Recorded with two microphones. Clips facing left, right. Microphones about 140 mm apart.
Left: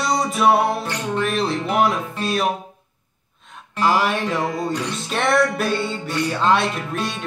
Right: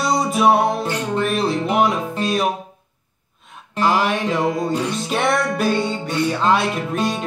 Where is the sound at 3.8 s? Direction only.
Centre (ahead or behind).